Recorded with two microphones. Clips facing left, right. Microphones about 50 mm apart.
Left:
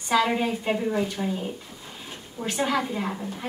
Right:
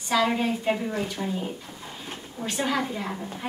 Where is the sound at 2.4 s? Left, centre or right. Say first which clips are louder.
Left 2 dB; centre.